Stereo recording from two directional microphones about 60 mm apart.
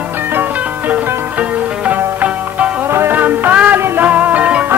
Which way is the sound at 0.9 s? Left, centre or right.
Right.